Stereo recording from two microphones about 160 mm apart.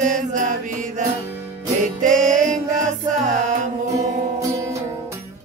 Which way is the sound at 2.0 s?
50° right (ahead or behind).